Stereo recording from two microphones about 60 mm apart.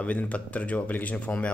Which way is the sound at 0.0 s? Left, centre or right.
Left.